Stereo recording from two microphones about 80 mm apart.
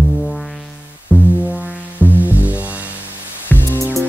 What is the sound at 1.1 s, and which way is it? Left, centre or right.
Music, left.